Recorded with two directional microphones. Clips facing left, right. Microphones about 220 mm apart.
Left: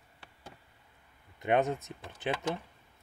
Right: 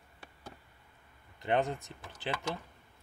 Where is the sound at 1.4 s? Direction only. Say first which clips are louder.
Left 3 dB; 20° left (ahead or behind).